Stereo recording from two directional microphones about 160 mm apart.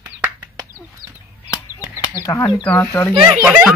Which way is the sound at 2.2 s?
20° left (ahead or behind).